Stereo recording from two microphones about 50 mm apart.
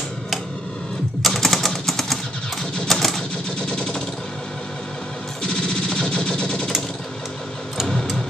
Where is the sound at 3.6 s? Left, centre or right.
Centre.